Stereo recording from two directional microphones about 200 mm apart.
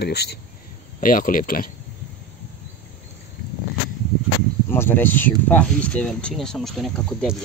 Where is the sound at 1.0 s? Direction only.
45° left (ahead or behind).